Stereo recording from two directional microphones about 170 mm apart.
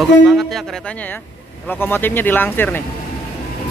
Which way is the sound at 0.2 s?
Centre (ahead or behind).